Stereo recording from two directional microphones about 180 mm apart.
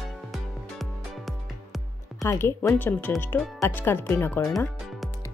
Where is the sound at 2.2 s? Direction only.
15° left (ahead or behind).